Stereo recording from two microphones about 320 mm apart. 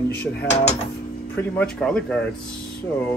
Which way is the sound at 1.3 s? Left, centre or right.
Centre.